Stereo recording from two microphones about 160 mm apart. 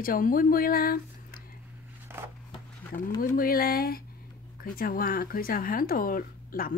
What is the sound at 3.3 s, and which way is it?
A woman's voice, 65° left (ahead or behind).